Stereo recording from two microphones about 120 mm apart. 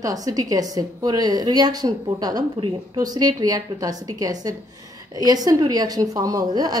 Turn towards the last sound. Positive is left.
turn(degrees=-35)  # may be behind; listen again after turning